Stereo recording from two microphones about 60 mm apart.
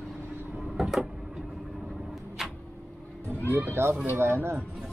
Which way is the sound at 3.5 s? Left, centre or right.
Right.